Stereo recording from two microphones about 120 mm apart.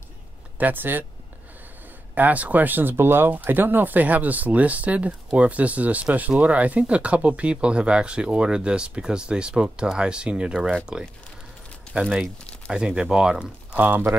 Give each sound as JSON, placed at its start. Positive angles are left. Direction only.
{"t": 0.6, "sound": "speech", "side_deg": -15}
{"t": 2.1, "sound": "speech", "side_deg": -15}
{"t": 11.9, "sound": "speech", "side_deg": -5}